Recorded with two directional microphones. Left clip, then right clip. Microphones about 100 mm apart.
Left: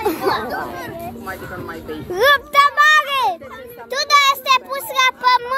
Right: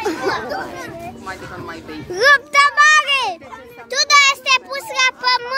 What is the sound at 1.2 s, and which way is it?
Speech, 10° right (ahead or behind).